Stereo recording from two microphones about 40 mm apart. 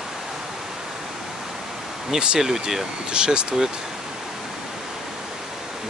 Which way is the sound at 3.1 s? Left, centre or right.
Right.